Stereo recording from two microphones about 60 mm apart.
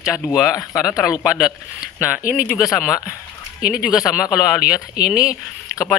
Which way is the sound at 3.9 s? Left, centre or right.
Left.